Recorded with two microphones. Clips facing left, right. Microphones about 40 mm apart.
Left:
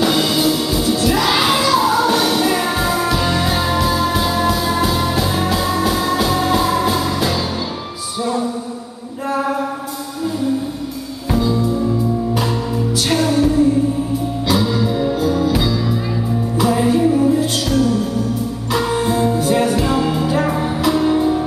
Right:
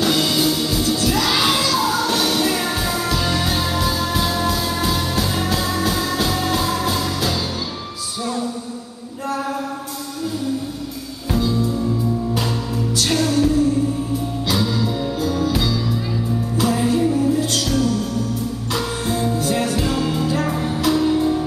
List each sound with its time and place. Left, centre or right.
0.0 s music: centre
9.3 s a sound: centre
11.3 s music: centre